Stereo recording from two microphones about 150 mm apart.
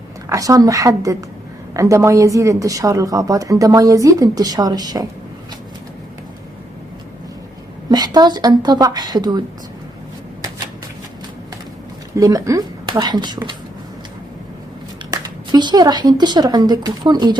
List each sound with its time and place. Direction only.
0.3 s a woman's voice: 20° right (ahead or behind)
7.9 s a woman's voice: 25° right (ahead or behind)
12.1 s a woman's voice: 25° right (ahead or behind)
15.0 s speech: 25° right (ahead or behind)